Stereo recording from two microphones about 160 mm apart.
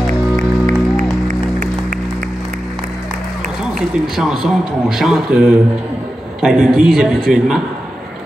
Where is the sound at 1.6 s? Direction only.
55° right (ahead or behind).